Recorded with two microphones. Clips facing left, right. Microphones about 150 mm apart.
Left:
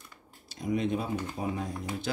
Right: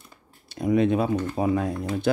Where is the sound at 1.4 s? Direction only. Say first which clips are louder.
Right 9 dB; 85° right.